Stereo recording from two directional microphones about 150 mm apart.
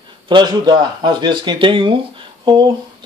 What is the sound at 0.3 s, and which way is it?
Speech, 30° right (ahead or behind).